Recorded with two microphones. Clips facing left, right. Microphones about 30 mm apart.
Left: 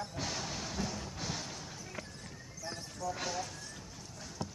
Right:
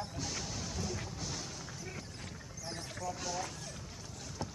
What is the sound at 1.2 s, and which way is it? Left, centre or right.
Music, left.